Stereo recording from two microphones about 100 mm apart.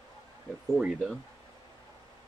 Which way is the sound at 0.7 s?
5° right (ahead or behind).